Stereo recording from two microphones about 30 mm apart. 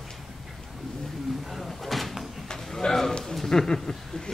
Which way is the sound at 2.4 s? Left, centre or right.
Centre.